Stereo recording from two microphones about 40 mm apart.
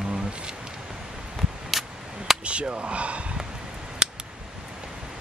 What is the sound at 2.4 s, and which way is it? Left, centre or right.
Speech, right.